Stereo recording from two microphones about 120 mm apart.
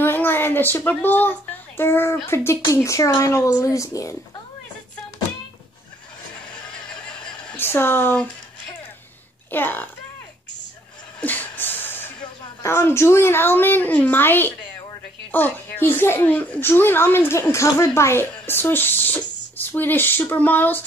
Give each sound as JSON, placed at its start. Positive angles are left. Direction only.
{"t": 0.0, "sound": "a sound", "side_deg": 15}
{"t": 1.8, "sound": "speech", "side_deg": 20}
{"t": 7.5, "sound": "a woman's voice", "side_deg": 20}
{"t": 9.5, "sound": "speech", "side_deg": 15}
{"t": 11.1, "sound": "a sound", "side_deg": 15}
{"t": 12.6, "sound": "speech", "side_deg": 20}